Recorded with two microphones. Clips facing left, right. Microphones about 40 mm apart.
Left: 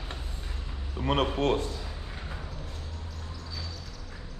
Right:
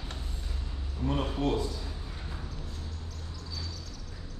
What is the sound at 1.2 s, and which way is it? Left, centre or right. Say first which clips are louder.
Speech: left 3 dB; left.